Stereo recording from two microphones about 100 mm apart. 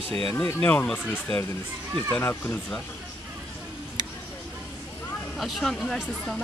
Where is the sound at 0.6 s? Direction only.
10° left (ahead or behind).